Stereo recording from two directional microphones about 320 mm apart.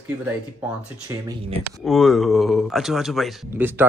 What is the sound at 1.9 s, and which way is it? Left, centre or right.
Speech, centre.